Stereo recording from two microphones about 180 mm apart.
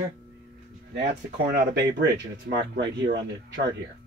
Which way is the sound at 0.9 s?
60° right (ahead or behind).